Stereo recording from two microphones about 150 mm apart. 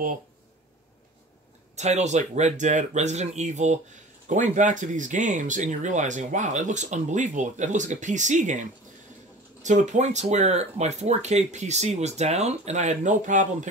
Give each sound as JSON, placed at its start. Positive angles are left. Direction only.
{"t": 1.8, "sound": "speech", "side_deg": -50}